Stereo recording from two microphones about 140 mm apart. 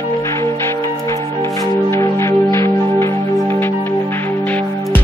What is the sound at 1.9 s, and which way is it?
Music, 20° left (ahead or behind).